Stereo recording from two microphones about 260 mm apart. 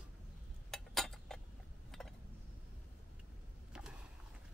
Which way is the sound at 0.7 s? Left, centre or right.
Centre.